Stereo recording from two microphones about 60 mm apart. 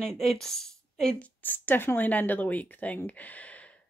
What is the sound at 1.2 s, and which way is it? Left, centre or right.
A woman's voice, left.